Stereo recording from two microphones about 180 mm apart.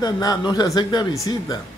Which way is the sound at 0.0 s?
20° left (ahead or behind).